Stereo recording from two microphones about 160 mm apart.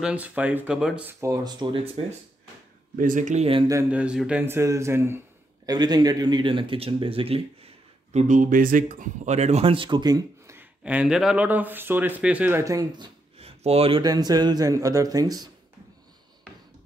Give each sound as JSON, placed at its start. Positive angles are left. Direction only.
{"t": 0.0, "sound": "speech", "side_deg": -10}
{"t": 1.2, "sound": "speech", "side_deg": -25}
{"t": 3.0, "sound": "speech", "side_deg": -55}
{"t": 3.9, "sound": "speech", "side_deg": -5}
{"t": 5.7, "sound": "speech", "side_deg": -25}
{"t": 10.8, "sound": "speech", "side_deg": -5}
{"t": 13.4, "sound": "a sound", "side_deg": -40}
{"t": 14.0, "sound": "speech", "side_deg": -25}